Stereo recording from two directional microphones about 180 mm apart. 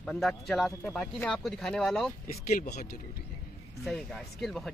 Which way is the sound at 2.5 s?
50° left (ahead or behind).